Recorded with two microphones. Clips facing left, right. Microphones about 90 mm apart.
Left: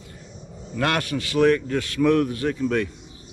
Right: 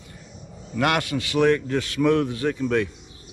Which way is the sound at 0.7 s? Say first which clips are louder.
Right 1 dB; 20° right (ahead or behind).